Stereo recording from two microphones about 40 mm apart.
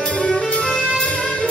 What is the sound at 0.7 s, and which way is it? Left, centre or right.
Music, centre.